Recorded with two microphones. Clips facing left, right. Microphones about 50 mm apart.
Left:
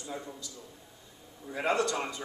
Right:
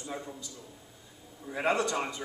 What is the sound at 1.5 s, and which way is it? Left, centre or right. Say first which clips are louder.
Speech: even; centre.